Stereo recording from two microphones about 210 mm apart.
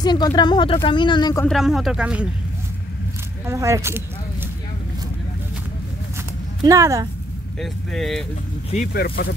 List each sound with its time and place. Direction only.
0.0 s speech: 20° left (ahead or behind)
1.4 s speech: centre (ahead or behind)
3.4 s speech: 15° right (ahead or behind)
6.6 s speech: 15° right (ahead or behind)
7.6 s speech: centre (ahead or behind)
8.9 s speech: 45° left (ahead or behind)